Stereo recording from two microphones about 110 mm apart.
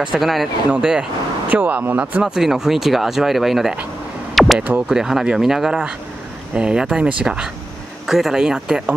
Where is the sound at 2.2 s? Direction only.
5° right (ahead or behind).